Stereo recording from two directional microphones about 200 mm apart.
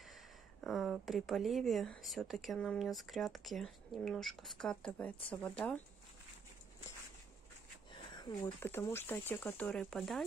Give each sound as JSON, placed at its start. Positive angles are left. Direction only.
{"t": 0.6, "sound": "speech", "side_deg": 0}
{"t": 7.9, "sound": "a sound", "side_deg": 20}
{"t": 8.9, "sound": "speech", "side_deg": 10}